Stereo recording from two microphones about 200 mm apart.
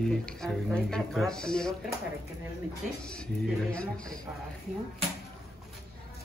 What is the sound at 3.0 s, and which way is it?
Speech, 5° left (ahead or behind).